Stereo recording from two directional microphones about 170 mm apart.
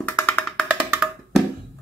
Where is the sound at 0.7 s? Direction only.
5° right (ahead or behind).